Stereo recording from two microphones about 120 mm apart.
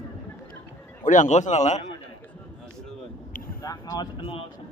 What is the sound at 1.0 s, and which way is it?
Speech, 90° left.